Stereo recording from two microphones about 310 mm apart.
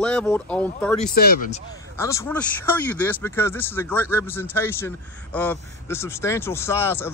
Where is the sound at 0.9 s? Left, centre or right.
Left.